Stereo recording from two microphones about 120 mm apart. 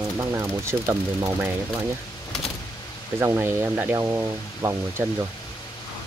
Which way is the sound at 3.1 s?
20° right (ahead or behind).